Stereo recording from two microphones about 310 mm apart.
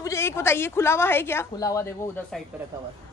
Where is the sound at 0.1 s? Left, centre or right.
Centre.